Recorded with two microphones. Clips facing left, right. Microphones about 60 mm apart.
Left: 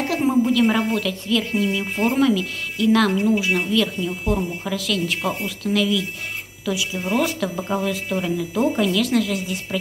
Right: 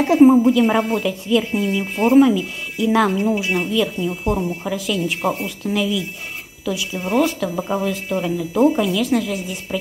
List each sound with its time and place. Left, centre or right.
0.0 s a woman's voice: right
6.7 s speech: centre